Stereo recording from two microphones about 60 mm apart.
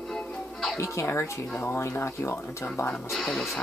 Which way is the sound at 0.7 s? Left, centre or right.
Left.